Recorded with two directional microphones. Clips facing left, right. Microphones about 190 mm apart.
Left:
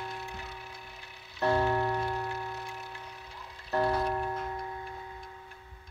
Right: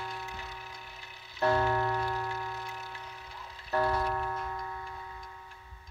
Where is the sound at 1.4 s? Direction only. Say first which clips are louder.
Left 1 dB; 25° left (ahead or behind).